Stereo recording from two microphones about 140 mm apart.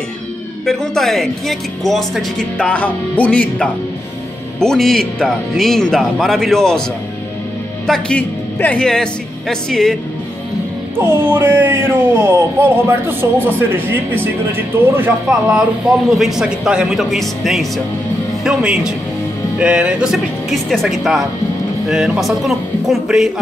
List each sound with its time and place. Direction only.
0.7 s speech: centre (ahead or behind)
7.8 s speech: 5° left (ahead or behind)
11.0 s speech: 15° right (ahead or behind)
16.2 s speech: 5° right (ahead or behind)